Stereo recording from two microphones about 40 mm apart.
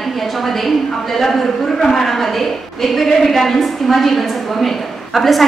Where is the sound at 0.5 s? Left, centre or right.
Centre.